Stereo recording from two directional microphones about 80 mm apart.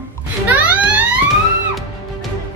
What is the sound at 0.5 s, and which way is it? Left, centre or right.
Music, centre.